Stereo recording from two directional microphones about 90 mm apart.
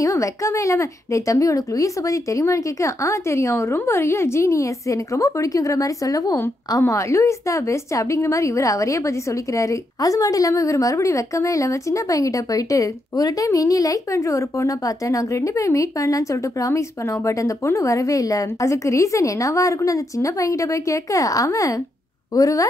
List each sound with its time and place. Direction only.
0.0 s a woman's voice: 35° left (ahead or behind)